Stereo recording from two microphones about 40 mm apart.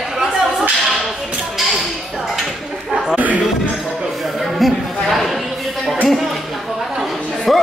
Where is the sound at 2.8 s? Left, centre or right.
Centre.